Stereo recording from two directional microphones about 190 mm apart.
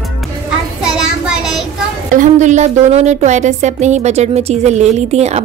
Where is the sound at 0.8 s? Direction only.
5° right (ahead or behind).